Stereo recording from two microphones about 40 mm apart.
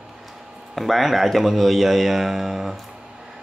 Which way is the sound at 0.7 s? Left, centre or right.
Centre.